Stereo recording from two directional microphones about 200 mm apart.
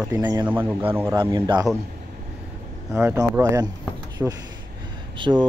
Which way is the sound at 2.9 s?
10° right (ahead or behind).